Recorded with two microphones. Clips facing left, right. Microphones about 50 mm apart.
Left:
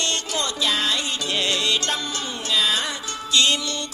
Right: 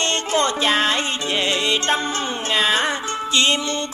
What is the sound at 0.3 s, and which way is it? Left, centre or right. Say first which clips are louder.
Music: right 9 dB; right.